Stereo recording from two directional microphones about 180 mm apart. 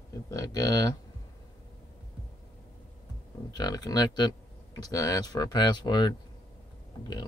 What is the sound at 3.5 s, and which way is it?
Speech, 20° left (ahead or behind).